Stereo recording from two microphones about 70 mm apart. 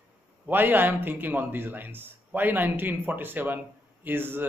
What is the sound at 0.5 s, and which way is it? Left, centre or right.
A man's voice, right.